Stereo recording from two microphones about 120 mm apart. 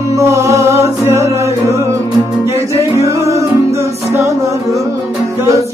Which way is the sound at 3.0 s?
25° right (ahead or behind).